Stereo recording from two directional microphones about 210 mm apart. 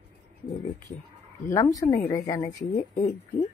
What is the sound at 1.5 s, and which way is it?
Speech, 15° left (ahead or behind).